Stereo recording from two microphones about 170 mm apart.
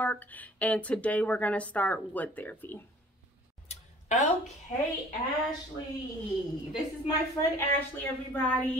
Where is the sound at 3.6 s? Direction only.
45° left (ahead or behind).